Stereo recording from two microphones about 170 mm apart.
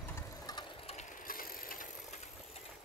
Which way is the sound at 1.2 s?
55° left (ahead or behind).